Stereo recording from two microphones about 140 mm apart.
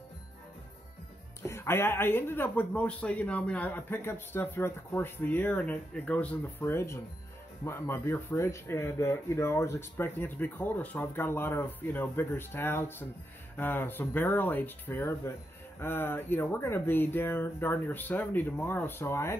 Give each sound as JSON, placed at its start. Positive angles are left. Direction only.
{"t": 1.4, "sound": "speech", "side_deg": 20}